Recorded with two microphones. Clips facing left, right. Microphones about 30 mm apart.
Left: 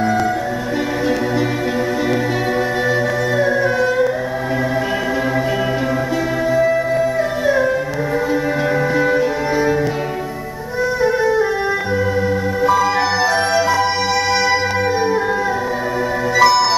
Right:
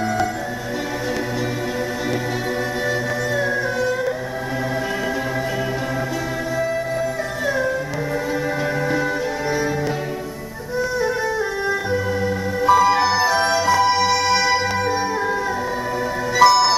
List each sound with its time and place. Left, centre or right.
3.3 s music: centre
6.5 s music: centre
8.9 s cello: centre
11.0 s music: centre
12.6 s music: centre
16.3 s music: centre